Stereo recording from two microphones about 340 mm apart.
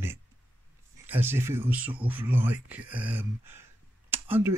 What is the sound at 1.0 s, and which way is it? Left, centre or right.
Speech, centre.